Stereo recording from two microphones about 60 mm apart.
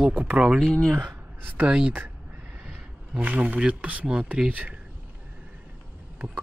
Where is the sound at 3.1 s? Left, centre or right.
Right.